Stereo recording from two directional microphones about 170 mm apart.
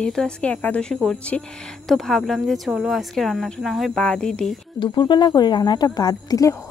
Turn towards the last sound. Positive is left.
turn(degrees=20)  # may be behind; listen again after turning